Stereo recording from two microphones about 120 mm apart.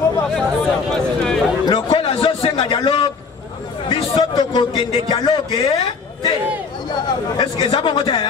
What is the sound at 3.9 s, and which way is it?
A man's voice, 45° left (ahead or behind).